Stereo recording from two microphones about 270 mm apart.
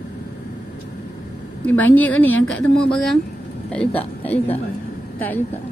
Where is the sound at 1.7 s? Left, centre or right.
Centre.